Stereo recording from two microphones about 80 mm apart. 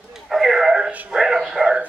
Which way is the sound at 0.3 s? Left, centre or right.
Centre.